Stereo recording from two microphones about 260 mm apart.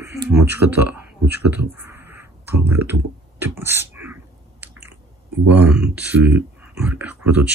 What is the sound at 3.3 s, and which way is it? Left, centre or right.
Chewing, centre.